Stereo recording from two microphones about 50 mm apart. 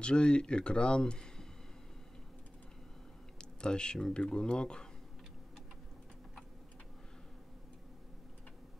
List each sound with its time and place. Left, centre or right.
0.0 s speech: centre
3.3 s speech: centre